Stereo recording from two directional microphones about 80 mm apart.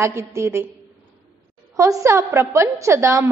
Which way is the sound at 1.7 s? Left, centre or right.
Right.